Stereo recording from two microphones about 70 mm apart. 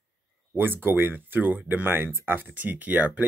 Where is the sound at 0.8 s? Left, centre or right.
Right.